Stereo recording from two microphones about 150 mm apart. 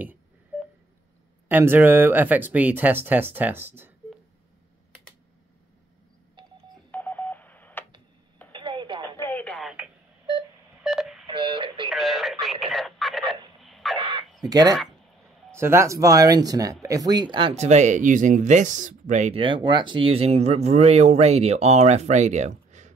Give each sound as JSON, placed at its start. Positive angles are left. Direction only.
{"t": 1.5, "sound": "speech", "side_deg": -15}
{"t": 6.9, "sound": "telephone dialing", "side_deg": 10}
{"t": 8.5, "sound": "telephone", "side_deg": -30}
{"t": 9.1, "sound": "radio", "side_deg": 15}
{"t": 10.8, "sound": "telephone dialing", "side_deg": -5}
{"t": 11.2, "sound": "radio", "side_deg": -35}
{"t": 11.9, "sound": "radio", "side_deg": 0}
{"t": 13.6, "sound": "a sound", "side_deg": 0}
{"t": 13.9, "sound": "crow", "side_deg": -35}
{"t": 14.5, "sound": "speech", "side_deg": -25}
{"t": 19.3, "sound": "speech", "side_deg": -35}